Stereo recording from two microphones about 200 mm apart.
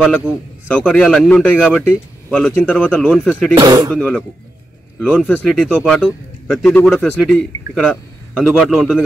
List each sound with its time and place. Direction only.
0.7 s a man's voice: 5° left (ahead or behind)
3.5 s speech: 20° right (ahead or behind)
3.9 s a man's voice: 5° left (ahead or behind)